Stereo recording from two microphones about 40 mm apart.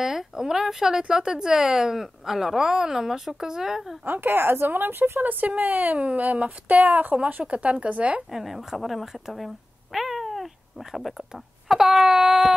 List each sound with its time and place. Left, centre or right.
0.0 s speech: centre
4.0 s a woman's voice: right
5.2 s speech: right
7.7 s speech: right
8.3 s speech: centre
9.9 s cat: centre
11.7 s speech: centre